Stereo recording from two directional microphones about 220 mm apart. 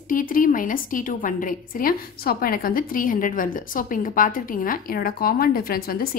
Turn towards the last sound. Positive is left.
turn(degrees=45)  # may be behind; listen again after turning